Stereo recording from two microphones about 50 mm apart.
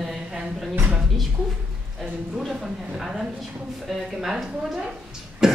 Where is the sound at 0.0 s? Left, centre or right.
Centre.